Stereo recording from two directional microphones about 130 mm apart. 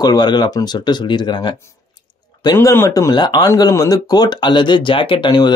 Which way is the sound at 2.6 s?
20° left (ahead or behind).